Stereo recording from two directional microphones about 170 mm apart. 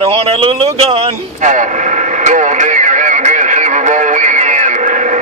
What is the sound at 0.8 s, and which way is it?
Radio, 35° right (ahead or behind).